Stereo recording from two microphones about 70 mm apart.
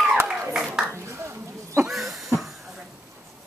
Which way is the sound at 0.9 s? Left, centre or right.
Right.